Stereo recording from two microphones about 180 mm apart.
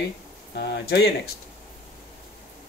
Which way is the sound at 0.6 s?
65° left (ahead or behind).